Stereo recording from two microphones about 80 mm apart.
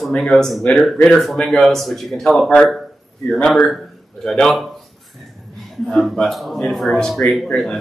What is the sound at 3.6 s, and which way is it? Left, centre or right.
A man's voice, centre.